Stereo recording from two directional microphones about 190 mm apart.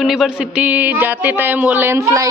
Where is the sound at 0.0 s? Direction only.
Centre (ahead or behind).